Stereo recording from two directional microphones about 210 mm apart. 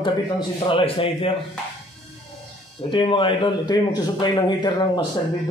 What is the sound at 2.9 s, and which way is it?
Speech, 25° left (ahead or behind).